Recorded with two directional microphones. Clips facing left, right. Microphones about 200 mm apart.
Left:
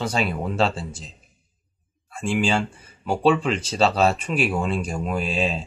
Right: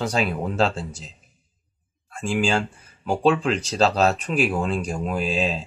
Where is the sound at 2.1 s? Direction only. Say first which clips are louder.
Even; centre (ahead or behind).